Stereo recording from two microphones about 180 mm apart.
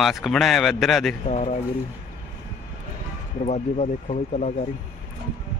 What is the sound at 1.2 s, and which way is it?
Speech, 40° left (ahead or behind).